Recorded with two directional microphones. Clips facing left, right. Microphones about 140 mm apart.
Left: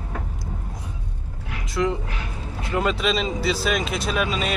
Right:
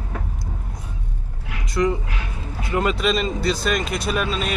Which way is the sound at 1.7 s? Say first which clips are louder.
Right 2 dB; centre (ahead or behind).